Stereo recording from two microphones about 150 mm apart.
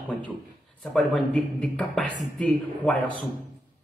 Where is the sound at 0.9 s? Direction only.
5° left (ahead or behind).